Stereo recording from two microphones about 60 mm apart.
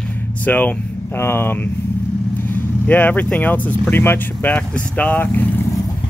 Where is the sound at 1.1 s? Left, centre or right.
Left.